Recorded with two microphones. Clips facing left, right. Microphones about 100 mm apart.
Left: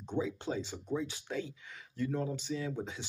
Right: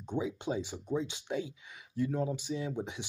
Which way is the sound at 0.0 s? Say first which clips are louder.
Right 1 dB; 15° right (ahead or behind).